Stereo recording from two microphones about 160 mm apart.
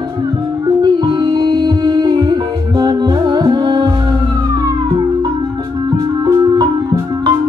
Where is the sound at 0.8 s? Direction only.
25° right (ahead or behind).